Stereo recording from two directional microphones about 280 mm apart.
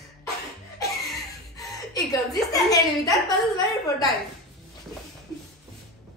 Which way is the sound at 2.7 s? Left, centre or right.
Centre.